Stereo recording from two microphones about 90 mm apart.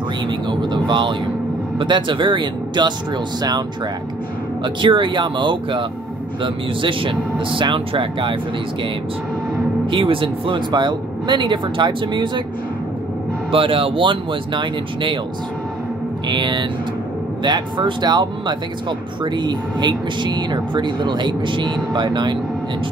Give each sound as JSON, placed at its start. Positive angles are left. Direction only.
{"t": 0.5, "sound": "speech", "side_deg": -60}
{"t": 4.6, "sound": "speech", "side_deg": -65}
{"t": 9.8, "sound": "speech", "side_deg": -70}
{"t": 10.7, "sound": "speech", "side_deg": -55}
{"t": 13.5, "sound": "speech", "side_deg": -90}
{"t": 16.3, "sound": "speech", "side_deg": -60}